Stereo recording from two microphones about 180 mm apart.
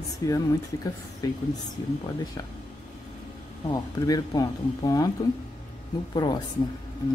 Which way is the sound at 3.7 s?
20° left (ahead or behind).